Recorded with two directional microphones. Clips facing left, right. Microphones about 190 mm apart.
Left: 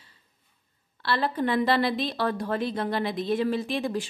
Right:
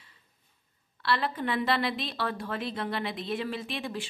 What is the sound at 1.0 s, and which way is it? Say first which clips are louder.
A woman's voice: left 3 dB; 40° left (ahead or behind).